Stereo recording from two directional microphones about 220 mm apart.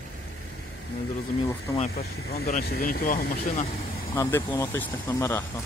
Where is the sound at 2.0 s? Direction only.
45° left (ahead or behind).